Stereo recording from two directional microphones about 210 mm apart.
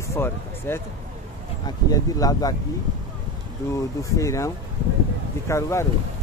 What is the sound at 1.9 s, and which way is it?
Speech, 15° left (ahead or behind).